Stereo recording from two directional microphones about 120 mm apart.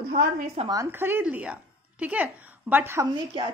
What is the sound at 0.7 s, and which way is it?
A woman's voice, 25° right (ahead or behind).